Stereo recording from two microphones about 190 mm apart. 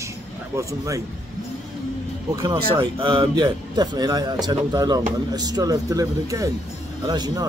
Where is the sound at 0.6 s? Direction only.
15° right (ahead or behind).